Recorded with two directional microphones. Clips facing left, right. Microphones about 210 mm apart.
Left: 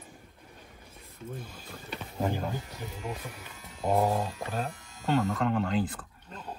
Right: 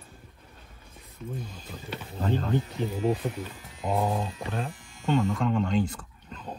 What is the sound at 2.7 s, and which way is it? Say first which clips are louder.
Speech: right 11 dB; 30° right (ahead or behind).